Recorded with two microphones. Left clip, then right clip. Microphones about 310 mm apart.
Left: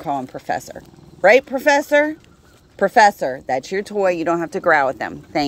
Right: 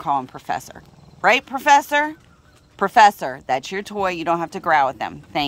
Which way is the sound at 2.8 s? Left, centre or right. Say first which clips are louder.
Even; right.